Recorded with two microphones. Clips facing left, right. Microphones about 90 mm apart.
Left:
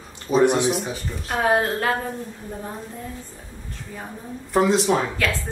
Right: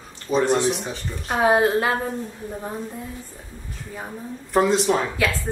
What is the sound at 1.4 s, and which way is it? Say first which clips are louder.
Speech: right 3 dB; 10° right (ahead or behind).